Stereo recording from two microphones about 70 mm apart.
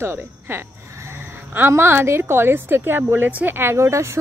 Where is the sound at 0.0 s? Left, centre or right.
Right.